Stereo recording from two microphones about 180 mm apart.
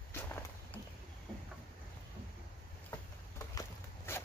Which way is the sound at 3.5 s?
15° left (ahead or behind).